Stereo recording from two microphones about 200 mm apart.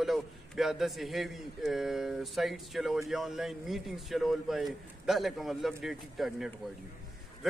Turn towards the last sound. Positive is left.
turn(degrees=0)  # may be behind; listen again after turning